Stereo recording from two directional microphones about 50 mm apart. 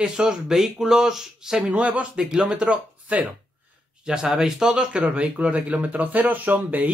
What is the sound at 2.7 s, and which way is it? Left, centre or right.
Speech, right.